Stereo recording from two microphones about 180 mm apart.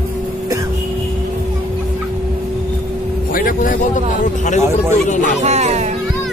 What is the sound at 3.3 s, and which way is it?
Speech, 50° left (ahead or behind).